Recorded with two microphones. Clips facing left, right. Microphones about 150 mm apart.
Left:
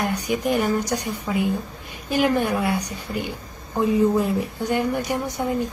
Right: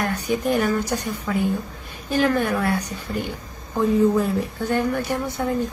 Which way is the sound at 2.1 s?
15° left (ahead or behind).